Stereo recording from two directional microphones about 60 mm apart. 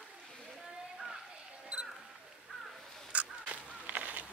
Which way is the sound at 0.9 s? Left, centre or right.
Centre.